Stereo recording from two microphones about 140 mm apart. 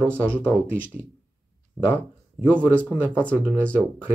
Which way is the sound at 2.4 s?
15° right (ahead or behind).